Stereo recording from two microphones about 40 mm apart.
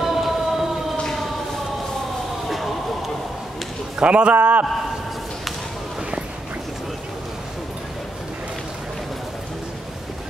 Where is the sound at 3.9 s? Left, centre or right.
Right.